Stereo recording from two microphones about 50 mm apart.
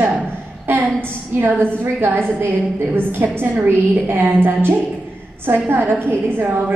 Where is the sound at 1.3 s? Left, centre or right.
Right.